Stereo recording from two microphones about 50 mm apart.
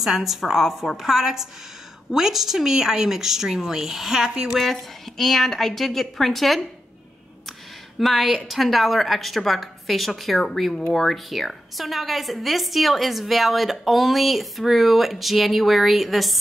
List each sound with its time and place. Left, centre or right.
0.0 s a woman's voice: centre
4.6 s a woman's voice: centre
8.0 s a woman's voice: centre